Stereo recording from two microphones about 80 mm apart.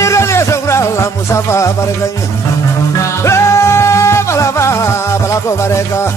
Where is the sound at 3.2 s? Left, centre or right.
Left.